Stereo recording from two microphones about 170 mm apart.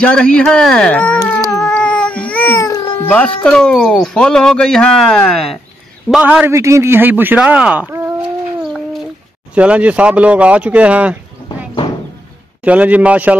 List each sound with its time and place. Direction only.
0.0 s speech: 5° left (ahead or behind)
1.5 s cat: 5° left (ahead or behind)
3.0 s a man's voice: 10° left (ahead or behind); by 8.1 s 10° right (ahead or behind)
9.6 s a man's voice: 10° right (ahead or behind)
11.4 s a sound: 30° left (ahead or behind)
12.6 s a man's voice: 10° right (ahead or behind)